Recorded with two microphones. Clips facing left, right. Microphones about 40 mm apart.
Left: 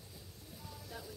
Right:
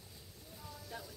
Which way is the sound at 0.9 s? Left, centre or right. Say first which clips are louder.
Right 2 dB; centre.